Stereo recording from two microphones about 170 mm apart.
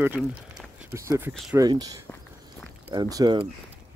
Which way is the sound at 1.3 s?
Centre (ahead or behind).